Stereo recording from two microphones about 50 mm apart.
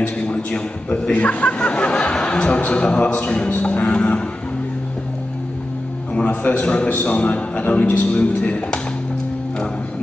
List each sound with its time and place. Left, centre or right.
0.2 s a man's voice: left
3.3 s music: left
6.1 s a man's voice: left
7.9 s speech: left
8.2 s a man's voice: left